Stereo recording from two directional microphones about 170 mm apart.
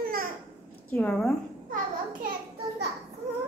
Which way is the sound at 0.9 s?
5° left (ahead or behind).